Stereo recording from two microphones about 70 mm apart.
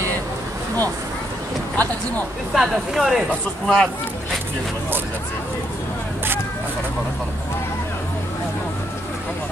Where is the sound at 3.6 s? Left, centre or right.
Centre.